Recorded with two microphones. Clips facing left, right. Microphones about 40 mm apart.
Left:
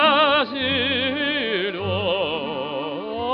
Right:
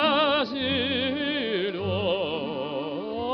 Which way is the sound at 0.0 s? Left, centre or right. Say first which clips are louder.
Left 5 dB; left.